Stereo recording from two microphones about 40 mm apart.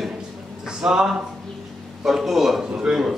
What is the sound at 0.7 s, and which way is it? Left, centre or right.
Speech, centre.